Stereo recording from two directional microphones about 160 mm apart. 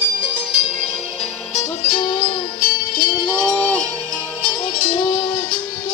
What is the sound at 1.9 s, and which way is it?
Music, 30° left (ahead or behind).